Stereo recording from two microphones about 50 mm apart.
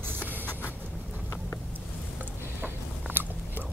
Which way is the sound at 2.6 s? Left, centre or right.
Right.